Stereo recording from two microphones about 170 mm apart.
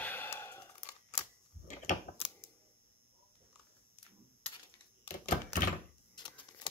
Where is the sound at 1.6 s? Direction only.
50° left (ahead or behind).